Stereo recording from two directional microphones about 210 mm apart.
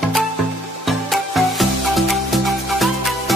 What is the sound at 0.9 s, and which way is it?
Music, centre (ahead or behind).